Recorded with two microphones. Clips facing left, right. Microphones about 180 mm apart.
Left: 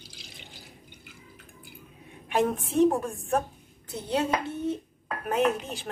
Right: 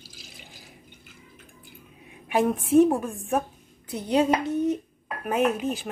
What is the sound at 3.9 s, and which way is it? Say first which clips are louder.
A woman's voice: right 5 dB; 15° right (ahead or behind).